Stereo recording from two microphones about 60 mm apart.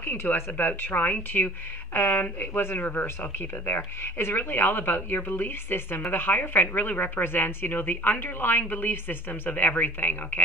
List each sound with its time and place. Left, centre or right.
0.0 s speech: left